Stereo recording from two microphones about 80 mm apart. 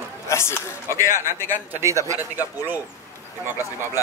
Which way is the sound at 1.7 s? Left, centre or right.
Right.